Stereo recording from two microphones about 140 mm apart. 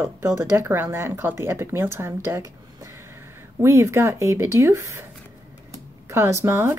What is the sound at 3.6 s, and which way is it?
Speech, 20° right (ahead or behind).